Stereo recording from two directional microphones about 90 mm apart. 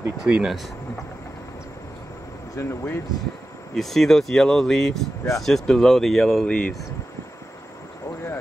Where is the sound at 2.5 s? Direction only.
30° left (ahead or behind).